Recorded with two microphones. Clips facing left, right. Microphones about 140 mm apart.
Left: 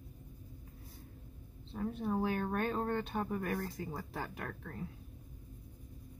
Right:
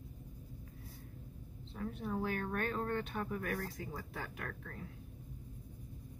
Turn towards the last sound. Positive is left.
turn(degrees=25)  # may be behind; listen again after turning